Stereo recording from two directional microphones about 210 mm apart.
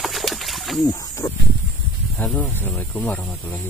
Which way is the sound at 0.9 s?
15° left (ahead or behind).